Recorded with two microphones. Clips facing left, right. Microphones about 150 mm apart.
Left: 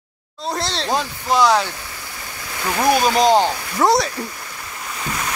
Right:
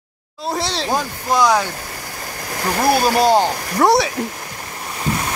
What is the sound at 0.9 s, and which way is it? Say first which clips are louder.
Speech: even; 10° right (ahead or behind).